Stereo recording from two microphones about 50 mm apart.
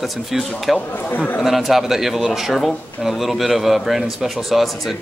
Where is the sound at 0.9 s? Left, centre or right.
Left.